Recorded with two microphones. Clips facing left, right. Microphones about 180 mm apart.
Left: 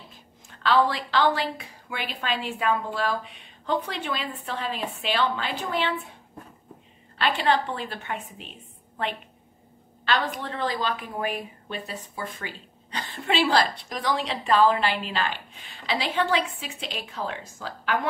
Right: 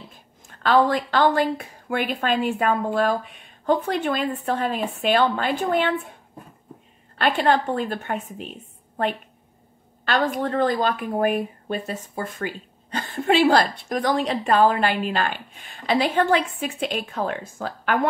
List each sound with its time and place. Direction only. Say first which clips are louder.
0.1 s a woman's voice: right 1 dB; 50° right (ahead or behind)
7.2 s a woman's voice: right 4 dB; 50° right (ahead or behind)
10.0 s a woman's voice: right 5 dB; 45° right (ahead or behind)